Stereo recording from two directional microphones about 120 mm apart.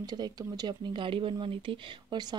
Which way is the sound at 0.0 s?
35° right (ahead or behind).